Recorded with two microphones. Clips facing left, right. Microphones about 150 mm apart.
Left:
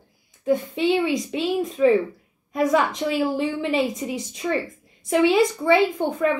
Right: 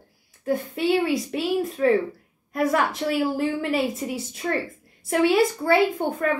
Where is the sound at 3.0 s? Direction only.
20° left (ahead or behind).